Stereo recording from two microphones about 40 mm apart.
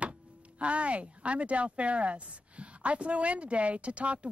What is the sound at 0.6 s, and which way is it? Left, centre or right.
Speech, right.